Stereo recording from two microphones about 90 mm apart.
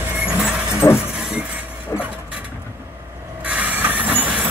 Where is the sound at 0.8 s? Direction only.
35° left (ahead or behind).